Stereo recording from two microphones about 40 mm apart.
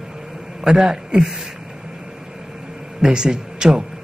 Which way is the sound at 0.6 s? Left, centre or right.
Centre.